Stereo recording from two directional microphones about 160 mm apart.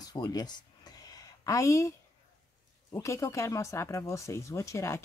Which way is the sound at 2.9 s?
20° left (ahead or behind).